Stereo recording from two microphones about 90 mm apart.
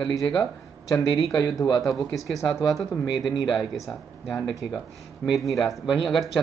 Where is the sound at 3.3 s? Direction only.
60° left (ahead or behind).